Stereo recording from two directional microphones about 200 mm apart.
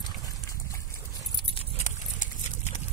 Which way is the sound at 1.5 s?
30° left (ahead or behind).